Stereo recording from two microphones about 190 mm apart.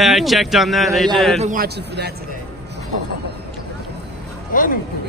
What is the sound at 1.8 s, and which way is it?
Speech, 60° right (ahead or behind).